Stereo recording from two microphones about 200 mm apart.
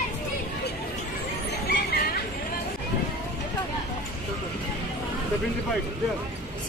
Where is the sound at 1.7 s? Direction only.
50° left (ahead or behind).